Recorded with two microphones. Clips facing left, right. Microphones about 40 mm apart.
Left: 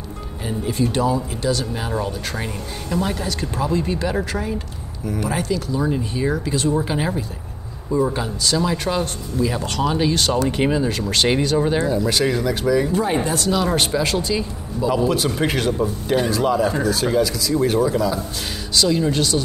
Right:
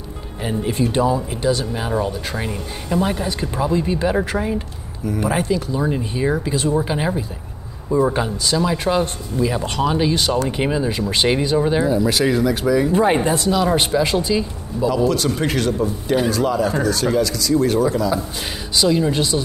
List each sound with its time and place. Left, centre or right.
0.4 s speech: right
1.7 s speech: centre
4.0 s speech: right
8.9 s speech: centre
9.6 s speech: right
9.8 s speech: centre
10.9 s speech: centre
11.5 s speech: centre
12.9 s speech: right
13.5 s speech: centre
13.7 s speech: centre
15.0 s a man's voice: centre
18.8 s speech: centre